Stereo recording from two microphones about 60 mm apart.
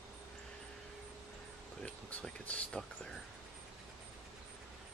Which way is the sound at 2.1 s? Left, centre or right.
Left.